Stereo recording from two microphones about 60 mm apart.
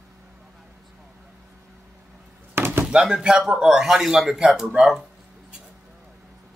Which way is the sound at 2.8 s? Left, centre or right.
Centre.